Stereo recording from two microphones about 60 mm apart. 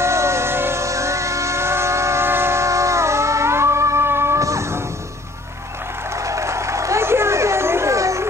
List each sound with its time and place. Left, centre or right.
0.0 s music: right
0.8 s vehicle: right
4.4 s music: right
6.2 s a sound: right